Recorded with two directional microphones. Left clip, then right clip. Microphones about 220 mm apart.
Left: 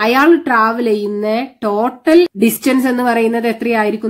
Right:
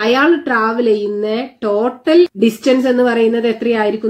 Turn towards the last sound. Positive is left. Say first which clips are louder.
# even
turn(degrees=50)  # may be behind; listen again after turning